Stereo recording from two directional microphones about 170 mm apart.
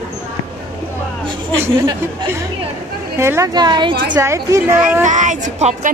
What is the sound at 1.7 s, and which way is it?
A woman's voice, 15° right (ahead or behind).